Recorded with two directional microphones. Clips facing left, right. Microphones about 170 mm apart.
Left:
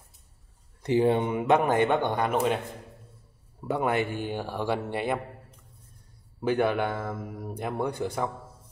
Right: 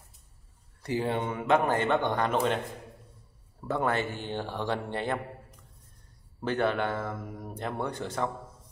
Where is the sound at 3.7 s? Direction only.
15° left (ahead or behind).